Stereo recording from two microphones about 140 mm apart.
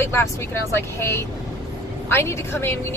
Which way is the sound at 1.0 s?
20° left (ahead or behind).